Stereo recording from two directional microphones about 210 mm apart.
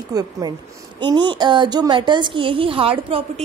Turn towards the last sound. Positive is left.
turn(degrees=-25)  # may be behind; listen again after turning